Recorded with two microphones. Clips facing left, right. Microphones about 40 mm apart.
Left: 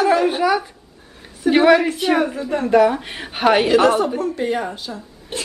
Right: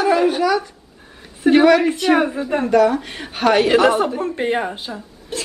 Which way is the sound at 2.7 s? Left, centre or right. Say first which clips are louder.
Left 1 dB; centre.